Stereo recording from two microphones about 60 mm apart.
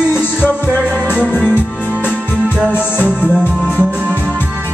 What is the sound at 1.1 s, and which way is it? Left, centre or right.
Music, centre.